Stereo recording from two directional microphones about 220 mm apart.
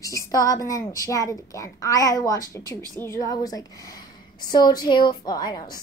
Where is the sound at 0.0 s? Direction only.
15° left (ahead or behind).